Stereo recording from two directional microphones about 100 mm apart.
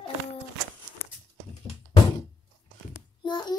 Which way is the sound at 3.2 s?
50° left (ahead or behind).